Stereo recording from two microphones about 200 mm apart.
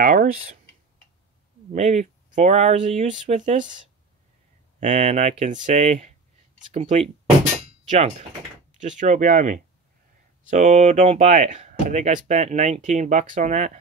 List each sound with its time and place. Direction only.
0.0 s speech: 45° right (ahead or behind)
1.7 s speech: 35° right (ahead or behind)
4.7 s speech: 35° right (ahead or behind)